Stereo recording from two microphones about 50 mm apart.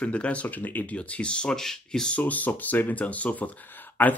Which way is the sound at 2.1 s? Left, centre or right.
Left.